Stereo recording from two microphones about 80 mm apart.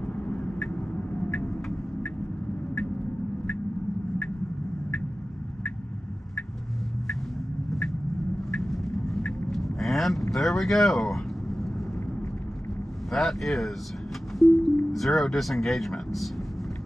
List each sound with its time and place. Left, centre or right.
0.0 s vehicle: centre
8.5 s vehicle: centre
13.1 s speech: centre
14.4 s music: centre
14.9 s speech: centre